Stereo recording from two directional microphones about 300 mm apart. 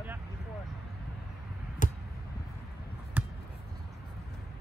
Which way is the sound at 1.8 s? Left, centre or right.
Left.